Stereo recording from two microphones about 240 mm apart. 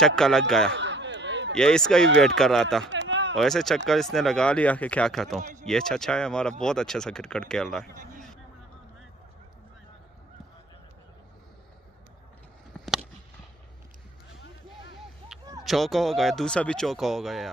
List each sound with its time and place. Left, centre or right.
0.0 s speech: centre
0.7 s a sound: right
1.6 s speech: centre
2.9 s a sound: right
3.3 s speech: centre
5.4 s speech: right
5.7 s speech: centre
7.8 s a man's voice: right
12.7 s a sound: centre
15.6 s speech: centre